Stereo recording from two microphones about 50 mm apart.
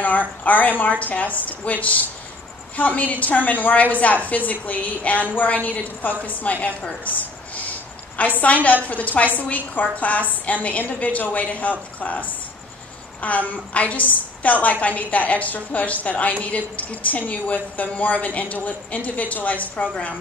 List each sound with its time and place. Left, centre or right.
0.0 s a woman's voice: left